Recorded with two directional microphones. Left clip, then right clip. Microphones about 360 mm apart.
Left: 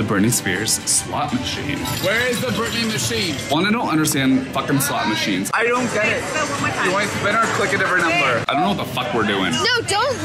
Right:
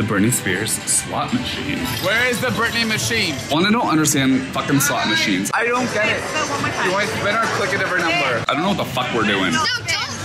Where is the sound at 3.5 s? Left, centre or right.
Centre.